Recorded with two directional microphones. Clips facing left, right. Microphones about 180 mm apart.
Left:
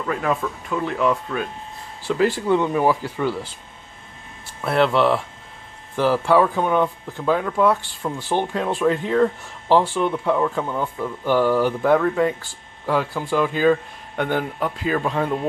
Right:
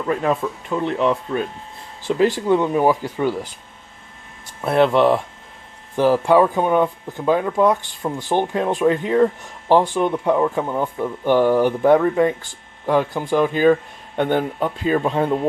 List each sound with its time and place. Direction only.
0.0 s speech: 25° right (ahead or behind)
4.6 s speech: 20° right (ahead or behind)